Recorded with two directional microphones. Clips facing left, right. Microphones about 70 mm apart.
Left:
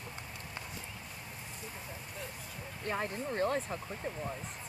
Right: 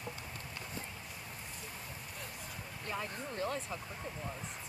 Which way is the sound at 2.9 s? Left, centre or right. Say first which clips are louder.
Left 5 dB; left.